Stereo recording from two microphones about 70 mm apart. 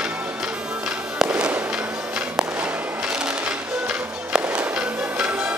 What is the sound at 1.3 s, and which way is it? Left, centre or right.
Fireworks, centre.